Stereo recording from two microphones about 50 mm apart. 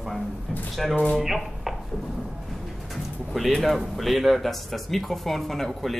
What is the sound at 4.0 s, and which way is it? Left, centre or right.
Speech, centre.